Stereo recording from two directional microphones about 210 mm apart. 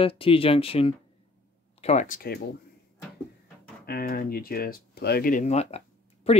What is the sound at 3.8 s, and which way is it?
Speech, 45° left (ahead or behind).